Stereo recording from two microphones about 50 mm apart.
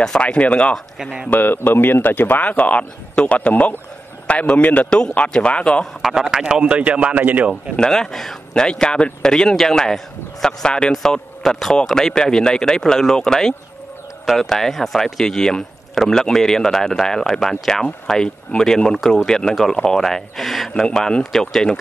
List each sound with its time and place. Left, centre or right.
0.2 s speech: left
1.3 s a man's voice: left
4.8 s speech: centre
6.0 s a man's voice: centre
6.4 s a man's voice: right
7.7 s a man's voice: centre
20.7 s a man's voice: centre